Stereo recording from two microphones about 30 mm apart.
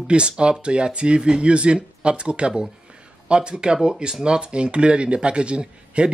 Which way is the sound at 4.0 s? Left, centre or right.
Right.